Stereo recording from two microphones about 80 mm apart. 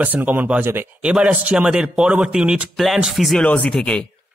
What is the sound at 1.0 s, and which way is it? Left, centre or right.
A man's voice, centre.